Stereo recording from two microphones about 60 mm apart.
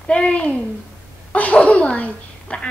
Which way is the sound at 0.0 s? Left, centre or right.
Centre.